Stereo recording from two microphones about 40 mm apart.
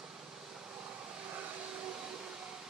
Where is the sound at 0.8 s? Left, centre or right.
Right.